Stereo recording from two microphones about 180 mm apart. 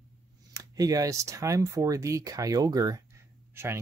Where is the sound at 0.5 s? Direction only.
20° right (ahead or behind).